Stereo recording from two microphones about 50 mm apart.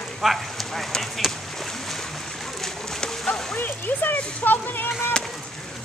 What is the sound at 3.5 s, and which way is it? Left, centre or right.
Speech, left.